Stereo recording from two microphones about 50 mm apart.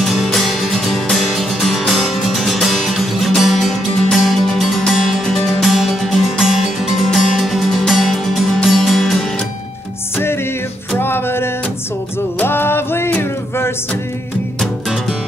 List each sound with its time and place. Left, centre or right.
0.0 s music: centre
5.5 s music: centre
10.1 s music: left